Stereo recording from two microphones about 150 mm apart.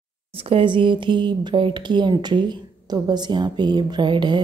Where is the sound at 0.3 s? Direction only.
40° right (ahead or behind).